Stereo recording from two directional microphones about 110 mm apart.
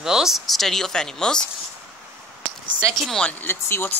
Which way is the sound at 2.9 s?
5° left (ahead or behind).